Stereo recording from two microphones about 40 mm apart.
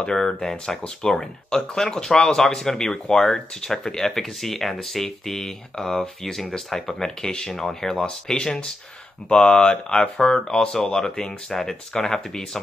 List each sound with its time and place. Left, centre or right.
0.0 s speech: centre